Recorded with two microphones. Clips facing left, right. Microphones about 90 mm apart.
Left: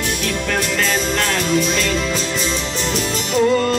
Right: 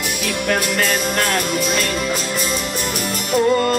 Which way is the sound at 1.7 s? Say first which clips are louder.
Left 1 dB; 50° right (ahead or behind).